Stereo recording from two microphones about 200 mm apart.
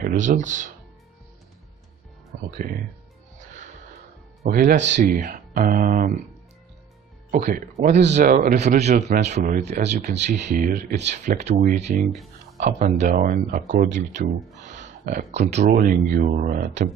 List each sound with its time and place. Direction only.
0.0 s speech: 40° right (ahead or behind)
4.4 s speech: 45° right (ahead or behind)
7.2 s speech: 45° right (ahead or behind)
12.1 s a sound: centre (ahead or behind)
12.5 s speech: 35° right (ahead or behind)